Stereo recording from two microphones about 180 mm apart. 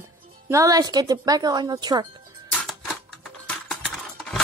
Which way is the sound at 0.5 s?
20° right (ahead or behind).